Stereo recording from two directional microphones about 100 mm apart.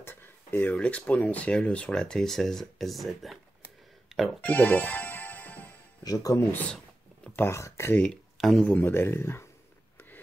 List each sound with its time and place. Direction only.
0.0 s speech: 20° left (ahead or behind); by 4.5 s 5° right (ahead or behind)
4.5 s music: 15° left (ahead or behind)
6.0 s speech: 35° left (ahead or behind)
7.2 s speech: 20° left (ahead or behind)
7.9 s speech: 10° left (ahead or behind)
8.6 s speech: 20° left (ahead or behind)
9.9 s a sound: 20° left (ahead or behind)